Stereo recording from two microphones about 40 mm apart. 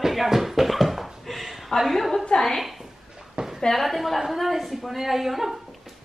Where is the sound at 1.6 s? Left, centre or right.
Centre.